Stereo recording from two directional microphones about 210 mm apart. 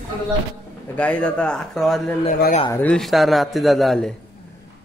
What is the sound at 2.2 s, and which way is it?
Speech, 35° left (ahead or behind).